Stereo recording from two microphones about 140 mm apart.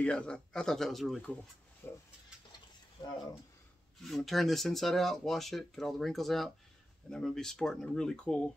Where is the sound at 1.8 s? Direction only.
15° left (ahead or behind).